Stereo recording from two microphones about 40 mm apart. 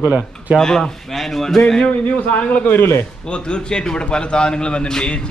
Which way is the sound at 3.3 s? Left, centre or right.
Left.